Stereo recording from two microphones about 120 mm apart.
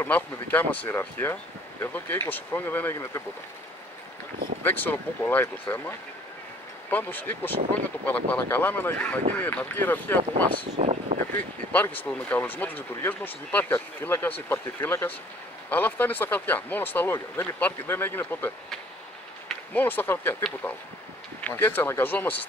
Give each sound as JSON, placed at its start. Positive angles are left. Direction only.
{"t": 0.0, "sound": "speech", "side_deg": 15}
{"t": 4.6, "sound": "speech", "side_deg": 15}
{"t": 10.8, "sound": "speech", "side_deg": -65}
{"t": 11.7, "sound": "speech", "side_deg": 15}
{"t": 19.7, "sound": "speech", "side_deg": 15}